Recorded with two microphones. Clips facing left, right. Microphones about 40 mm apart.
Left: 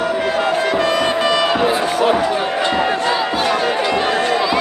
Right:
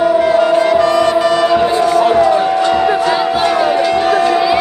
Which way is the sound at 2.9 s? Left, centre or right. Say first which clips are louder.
Right 4 dB; centre.